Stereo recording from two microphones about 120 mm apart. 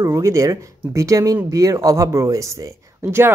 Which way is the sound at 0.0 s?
25° right (ahead or behind).